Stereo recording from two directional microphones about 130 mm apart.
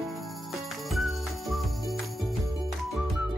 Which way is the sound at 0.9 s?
Centre (ahead or behind).